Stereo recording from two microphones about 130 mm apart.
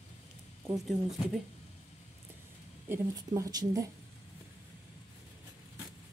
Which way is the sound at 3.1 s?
30° right (ahead or behind).